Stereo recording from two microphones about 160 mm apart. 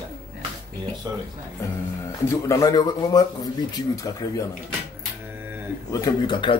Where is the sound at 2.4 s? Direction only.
20° left (ahead or behind).